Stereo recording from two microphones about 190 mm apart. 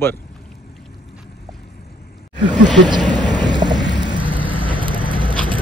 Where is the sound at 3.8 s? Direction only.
70° left (ahead or behind).